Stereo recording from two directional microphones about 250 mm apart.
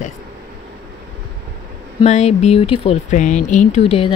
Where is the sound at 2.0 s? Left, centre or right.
Left.